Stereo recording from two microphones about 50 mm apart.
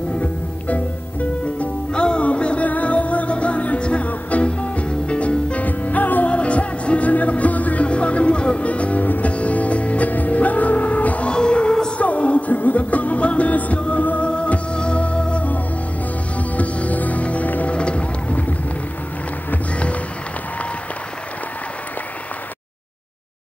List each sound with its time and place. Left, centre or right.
0.2 s music: left
11.3 s music: centre
12.0 s music: left
17.7 s run: left